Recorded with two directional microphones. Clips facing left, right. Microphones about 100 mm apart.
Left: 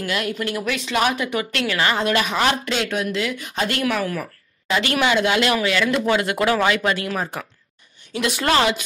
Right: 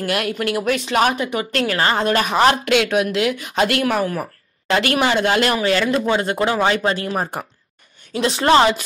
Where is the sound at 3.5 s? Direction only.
55° right (ahead or behind).